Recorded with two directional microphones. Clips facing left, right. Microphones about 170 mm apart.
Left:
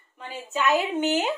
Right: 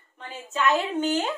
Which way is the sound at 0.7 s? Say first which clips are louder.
Left 1 dB; 15° left (ahead or behind).